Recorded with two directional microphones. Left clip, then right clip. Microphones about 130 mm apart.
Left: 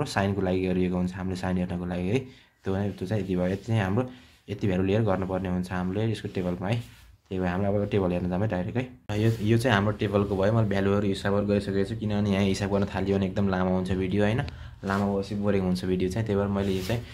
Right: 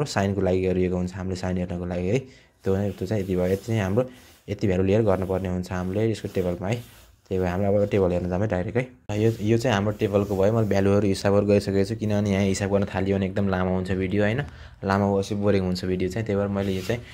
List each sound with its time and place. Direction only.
0.0 s speech: 35° right (ahead or behind)
10.7 s speech: 45° right (ahead or behind); by 11.9 s 65° right (ahead or behind)
12.1 s speech: 40° right (ahead or behind); by 14.4 s 25° right (ahead or behind)
15.6 s speech: 25° right (ahead or behind)